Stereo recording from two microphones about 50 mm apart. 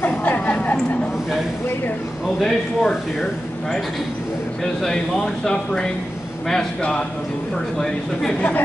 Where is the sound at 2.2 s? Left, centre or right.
Centre.